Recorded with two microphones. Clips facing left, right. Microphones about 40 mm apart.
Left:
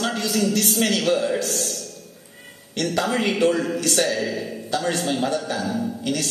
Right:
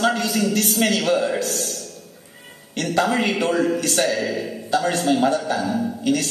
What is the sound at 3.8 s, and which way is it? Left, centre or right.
Speech, right.